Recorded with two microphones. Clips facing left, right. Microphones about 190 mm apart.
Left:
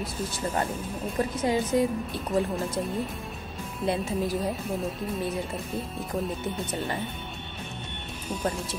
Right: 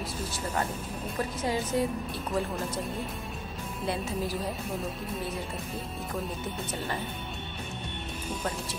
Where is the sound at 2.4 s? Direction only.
Centre (ahead or behind).